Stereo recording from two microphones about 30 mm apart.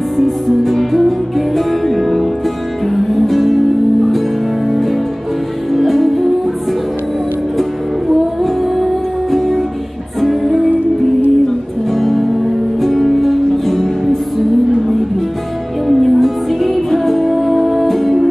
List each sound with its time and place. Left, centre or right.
0.2 s music: centre
5.7 s music: centre
8.4 s music: centre
11.9 s music: centre
15.9 s music: centre